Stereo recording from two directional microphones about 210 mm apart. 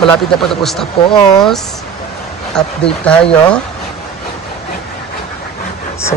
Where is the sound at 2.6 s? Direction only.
5° left (ahead or behind).